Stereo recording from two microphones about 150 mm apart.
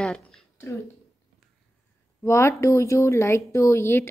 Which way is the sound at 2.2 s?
20° left (ahead or behind).